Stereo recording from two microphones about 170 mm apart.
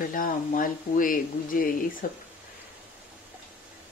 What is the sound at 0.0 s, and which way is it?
Speech, 55° left (ahead or behind).